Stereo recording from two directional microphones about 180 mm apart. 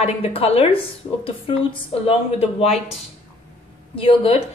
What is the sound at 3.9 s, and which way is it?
Speech, 30° left (ahead or behind).